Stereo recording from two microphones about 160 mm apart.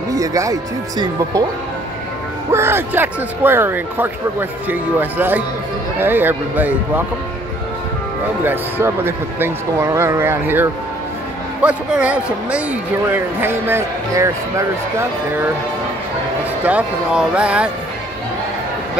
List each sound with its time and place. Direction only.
0.1 s speech: 20° right (ahead or behind)
2.5 s speech: 15° right (ahead or behind)
8.5 s speech: 15° right (ahead or behind)
16.6 s speech: 5° right (ahead or behind)